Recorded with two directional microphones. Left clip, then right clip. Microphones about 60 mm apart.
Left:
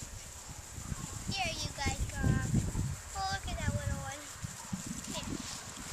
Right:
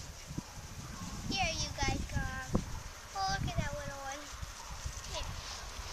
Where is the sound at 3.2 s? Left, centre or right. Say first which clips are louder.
Right 1 dB; centre.